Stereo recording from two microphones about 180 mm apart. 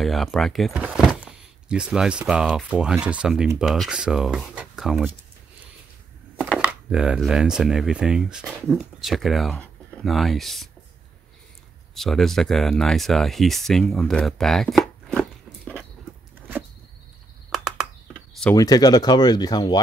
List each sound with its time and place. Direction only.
0.0 s speech: centre (ahead or behind)
6.6 s speech: 5° right (ahead or behind)
11.9 s speech: centre (ahead or behind)
17.5 s a sound: centre (ahead or behind)
18.4 s speech: 15° left (ahead or behind)